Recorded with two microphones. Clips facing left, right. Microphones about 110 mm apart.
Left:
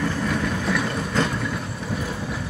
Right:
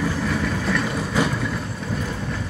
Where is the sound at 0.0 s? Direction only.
Centre (ahead or behind).